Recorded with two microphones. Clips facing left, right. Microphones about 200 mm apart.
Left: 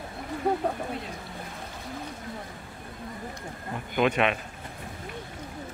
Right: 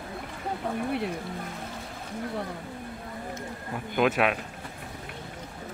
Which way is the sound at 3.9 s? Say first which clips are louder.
Even; 5° right (ahead or behind).